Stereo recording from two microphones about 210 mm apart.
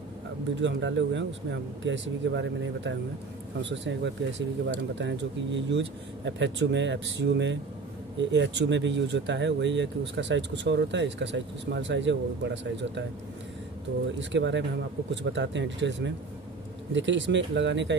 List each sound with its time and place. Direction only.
0.6 s speech: 60° right (ahead or behind)
14.3 s speech: 60° right (ahead or behind)